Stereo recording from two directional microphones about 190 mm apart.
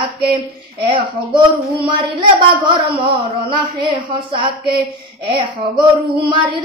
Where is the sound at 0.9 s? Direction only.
25° right (ahead or behind).